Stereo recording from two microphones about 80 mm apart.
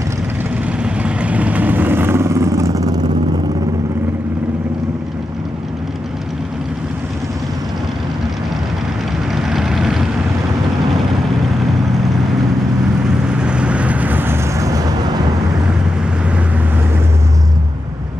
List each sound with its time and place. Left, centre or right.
0.7 s vehicle: centre; by 3.0 s right
9.3 s vehicle: centre
13.3 s vehicle: centre